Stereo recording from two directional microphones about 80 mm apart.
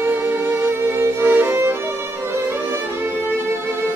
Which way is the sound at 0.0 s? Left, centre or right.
Right.